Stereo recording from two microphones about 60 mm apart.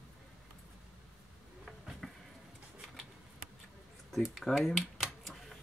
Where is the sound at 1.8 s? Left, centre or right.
Centre.